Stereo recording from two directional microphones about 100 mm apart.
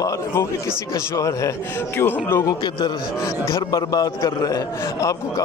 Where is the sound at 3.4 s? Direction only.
40° left (ahead or behind).